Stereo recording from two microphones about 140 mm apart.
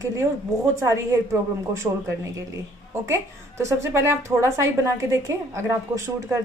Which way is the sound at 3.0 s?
20° right (ahead or behind).